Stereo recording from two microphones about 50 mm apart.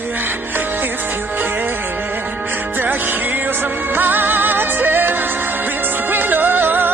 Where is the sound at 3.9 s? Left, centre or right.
Right.